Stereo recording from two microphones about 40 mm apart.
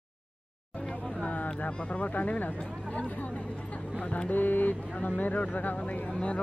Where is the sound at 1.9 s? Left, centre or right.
Left.